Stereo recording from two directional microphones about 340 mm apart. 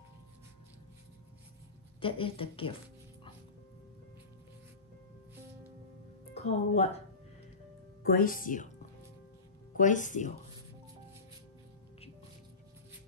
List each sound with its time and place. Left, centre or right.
2.0 s speech: centre
6.3 s speech: centre
8.0 s speech: left
9.8 s speech: left